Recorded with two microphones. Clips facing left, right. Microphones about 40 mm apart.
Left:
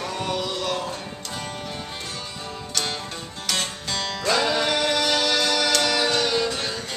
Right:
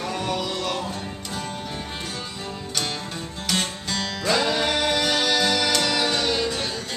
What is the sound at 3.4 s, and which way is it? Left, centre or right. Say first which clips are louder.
Music: right 1 dB; centre.